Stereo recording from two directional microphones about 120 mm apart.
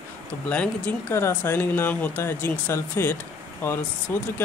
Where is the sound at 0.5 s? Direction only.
10° left (ahead or behind).